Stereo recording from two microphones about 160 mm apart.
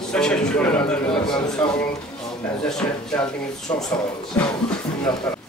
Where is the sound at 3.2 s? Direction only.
5° left (ahead or behind).